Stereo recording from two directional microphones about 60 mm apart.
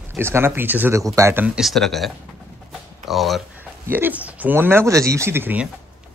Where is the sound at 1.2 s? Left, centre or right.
Right.